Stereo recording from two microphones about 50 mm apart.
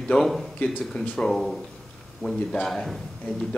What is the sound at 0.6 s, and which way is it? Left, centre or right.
Speech, left.